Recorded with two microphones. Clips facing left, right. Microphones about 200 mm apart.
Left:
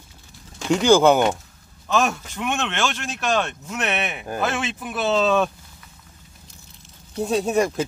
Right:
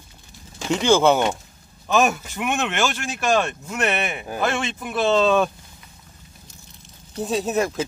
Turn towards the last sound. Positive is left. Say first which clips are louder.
# left 2 dB
turn(degrees=-5)  # may be behind; listen again after turning